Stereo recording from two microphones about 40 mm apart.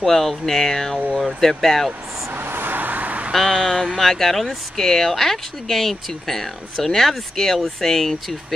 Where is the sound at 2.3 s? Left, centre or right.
Right.